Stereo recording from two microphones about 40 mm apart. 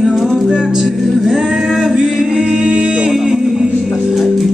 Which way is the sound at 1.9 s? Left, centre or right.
Centre.